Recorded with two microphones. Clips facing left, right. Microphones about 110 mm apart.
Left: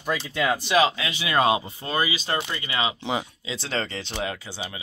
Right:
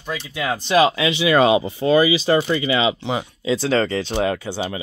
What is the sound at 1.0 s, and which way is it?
Speech, 90° right.